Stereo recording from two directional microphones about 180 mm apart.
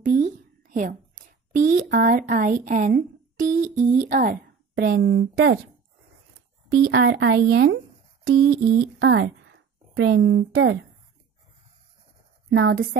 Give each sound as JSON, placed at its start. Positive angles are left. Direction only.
{"t": 0.0, "sound": "a sound", "side_deg": -50}
{"t": 3.3, "sound": "music", "side_deg": -45}
{"t": 3.9, "sound": "a woman's voice", "side_deg": -50}
{"t": 6.9, "sound": "a woman's voice", "side_deg": -70}
{"t": 12.4, "sound": "a woman's voice", "side_deg": -80}